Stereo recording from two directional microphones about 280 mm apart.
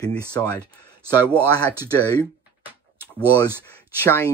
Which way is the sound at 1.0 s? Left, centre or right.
Centre.